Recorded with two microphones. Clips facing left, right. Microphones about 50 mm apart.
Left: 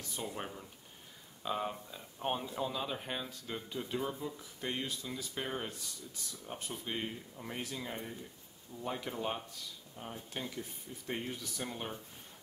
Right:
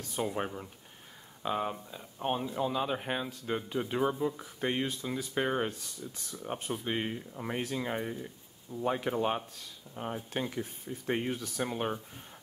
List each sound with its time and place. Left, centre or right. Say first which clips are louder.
0.1 s speech: right 8 dB; right
1.4 s speech: right 4 dB; right
1.9 s speech: right 3 dB; centre
2.7 s speech: right 6 dB; right